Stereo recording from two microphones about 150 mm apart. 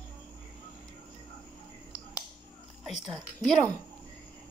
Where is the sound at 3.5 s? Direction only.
5° left (ahead or behind).